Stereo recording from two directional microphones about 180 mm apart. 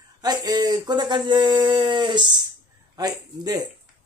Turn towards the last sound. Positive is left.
turn(degrees=-20)  # may be behind; listen again after turning